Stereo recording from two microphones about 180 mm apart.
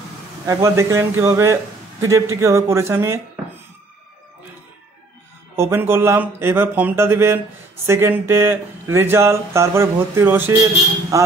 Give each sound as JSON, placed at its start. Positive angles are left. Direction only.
{"t": 0.5, "sound": "speech", "side_deg": -15}
{"t": 5.6, "sound": "speech", "side_deg": -15}